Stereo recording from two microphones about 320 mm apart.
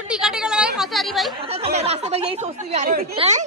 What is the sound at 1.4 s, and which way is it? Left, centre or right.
Speech, centre.